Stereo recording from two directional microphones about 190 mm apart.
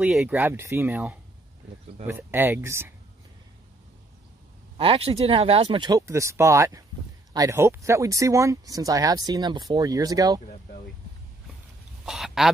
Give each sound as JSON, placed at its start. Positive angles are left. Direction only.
{"t": 0.0, "sound": "speech", "side_deg": -5}
{"t": 4.7, "sound": "speech", "side_deg": -30}
{"t": 12.1, "sound": "speech", "side_deg": 0}